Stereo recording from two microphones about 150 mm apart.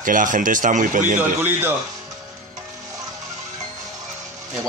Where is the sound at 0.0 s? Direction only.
60° right (ahead or behind).